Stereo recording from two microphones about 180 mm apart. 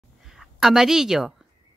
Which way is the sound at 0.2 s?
Centre (ahead or behind).